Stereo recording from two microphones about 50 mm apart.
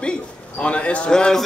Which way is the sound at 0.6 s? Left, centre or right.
Left.